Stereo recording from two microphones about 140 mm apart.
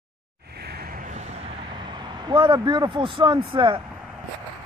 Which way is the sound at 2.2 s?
35° right (ahead or behind).